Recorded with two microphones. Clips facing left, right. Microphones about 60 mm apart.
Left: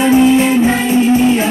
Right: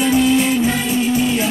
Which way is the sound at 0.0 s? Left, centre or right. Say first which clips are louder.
Left 5 dB; left.